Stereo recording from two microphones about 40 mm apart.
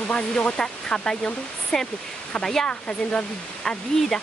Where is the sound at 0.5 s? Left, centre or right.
Left.